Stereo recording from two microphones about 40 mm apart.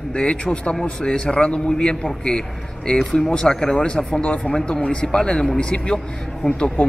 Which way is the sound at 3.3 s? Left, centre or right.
Left.